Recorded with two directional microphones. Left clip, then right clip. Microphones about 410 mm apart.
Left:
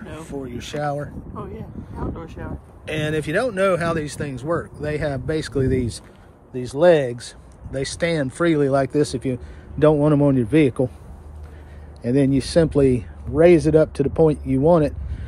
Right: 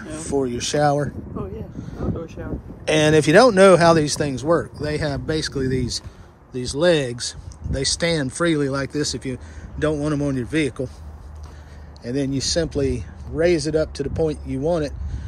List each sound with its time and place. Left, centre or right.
0.2 s speech: centre
2.4 s speech: left
2.8 s speech: centre
12.0 s speech: centre
14.7 s a sound: centre